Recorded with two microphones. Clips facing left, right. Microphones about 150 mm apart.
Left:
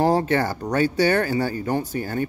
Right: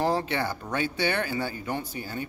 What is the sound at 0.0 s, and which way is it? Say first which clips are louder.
Speech: left 7 dB; 40° left (ahead or behind).